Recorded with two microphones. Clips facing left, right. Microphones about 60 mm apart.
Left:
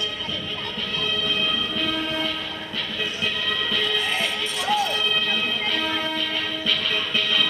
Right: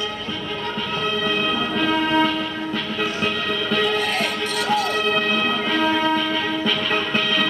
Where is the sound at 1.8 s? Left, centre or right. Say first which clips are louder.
Right 11 dB; right.